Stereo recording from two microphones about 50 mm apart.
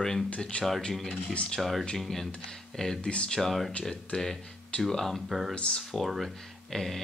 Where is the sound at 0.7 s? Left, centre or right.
Centre.